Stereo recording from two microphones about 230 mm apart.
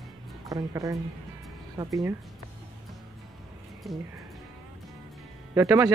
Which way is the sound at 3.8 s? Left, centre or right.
Centre.